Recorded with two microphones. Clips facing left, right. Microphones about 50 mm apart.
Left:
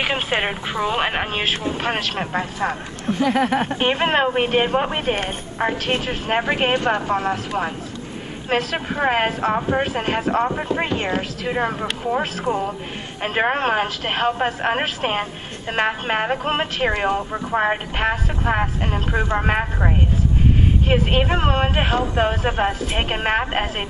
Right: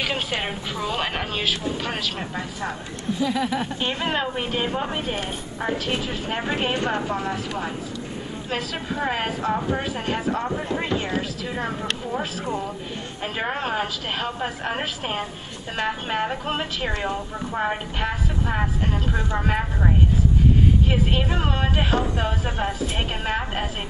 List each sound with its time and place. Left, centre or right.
0.0 s speech: left
20.9 s speech: left